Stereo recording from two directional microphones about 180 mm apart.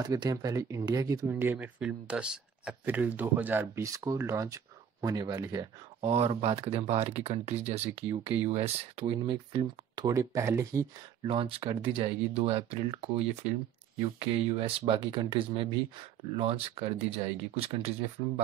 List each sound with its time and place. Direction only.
0.0 s speech: 20° right (ahead or behind)
5.9 s speech: 35° right (ahead or behind); by 10.9 s 15° right (ahead or behind)
11.2 s speech: 30° right (ahead or behind)